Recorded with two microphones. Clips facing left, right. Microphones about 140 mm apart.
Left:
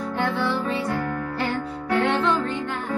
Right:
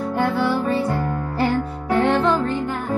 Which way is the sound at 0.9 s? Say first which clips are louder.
Right 2 dB; 20° right (ahead or behind).